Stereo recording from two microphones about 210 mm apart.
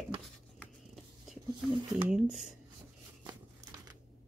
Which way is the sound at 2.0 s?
5° right (ahead or behind).